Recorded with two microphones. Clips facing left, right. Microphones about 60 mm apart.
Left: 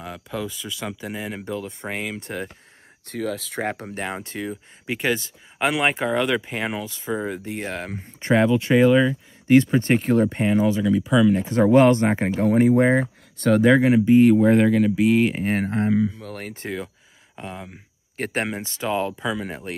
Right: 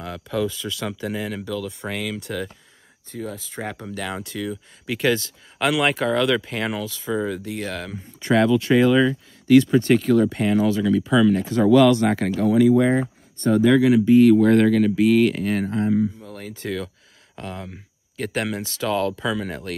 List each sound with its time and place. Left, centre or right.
0.0 s speech: centre
1.4 s speech: left
3.1 s speech: left
3.8 s speech: left
9.5 s speech: left; by 11.4 s centre
11.6 s speech: left
12.4 s speech: left
15.5 s speech: left
17.4 s speech: centre
18.1 s speech: left; by 19.7 s centre